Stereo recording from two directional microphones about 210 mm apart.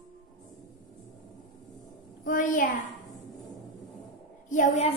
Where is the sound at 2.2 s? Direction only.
40° left (ahead or behind).